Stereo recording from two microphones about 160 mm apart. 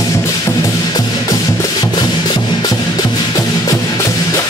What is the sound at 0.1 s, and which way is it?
Music, 20° left (ahead or behind).